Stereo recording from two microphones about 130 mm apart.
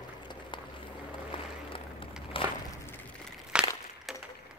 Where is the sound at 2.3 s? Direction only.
45° left (ahead or behind).